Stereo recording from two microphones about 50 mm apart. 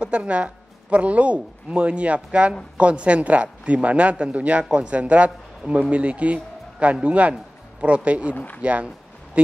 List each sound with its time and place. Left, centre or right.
0.0 s a man's voice: right